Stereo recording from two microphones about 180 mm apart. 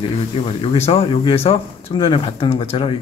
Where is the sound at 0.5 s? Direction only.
35° left (ahead or behind).